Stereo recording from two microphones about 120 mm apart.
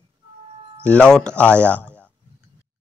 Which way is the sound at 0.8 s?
10° left (ahead or behind).